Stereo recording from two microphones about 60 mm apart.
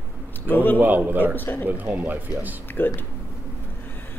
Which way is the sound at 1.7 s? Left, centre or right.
Right.